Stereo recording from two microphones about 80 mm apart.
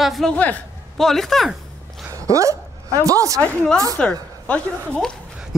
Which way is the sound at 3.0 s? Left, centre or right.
Right.